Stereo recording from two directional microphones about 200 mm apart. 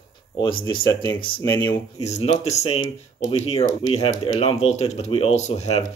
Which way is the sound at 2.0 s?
30° left (ahead or behind).